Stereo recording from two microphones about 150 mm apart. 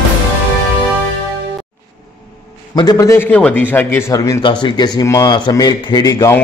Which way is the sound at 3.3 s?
10° left (ahead or behind).